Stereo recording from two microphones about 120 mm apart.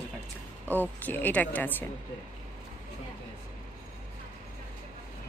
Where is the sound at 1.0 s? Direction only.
15° left (ahead or behind).